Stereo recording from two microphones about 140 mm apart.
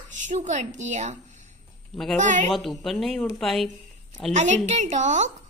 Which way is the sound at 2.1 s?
60° right (ahead or behind).